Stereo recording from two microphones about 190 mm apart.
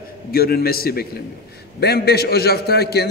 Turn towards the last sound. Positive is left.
turn(degrees=55)  # may be behind; listen again after turning